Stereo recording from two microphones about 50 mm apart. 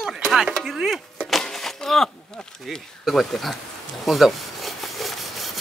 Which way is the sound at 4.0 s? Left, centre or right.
Centre.